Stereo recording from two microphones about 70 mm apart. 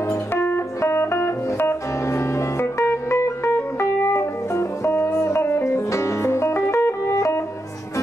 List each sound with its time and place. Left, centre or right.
0.1 s music: left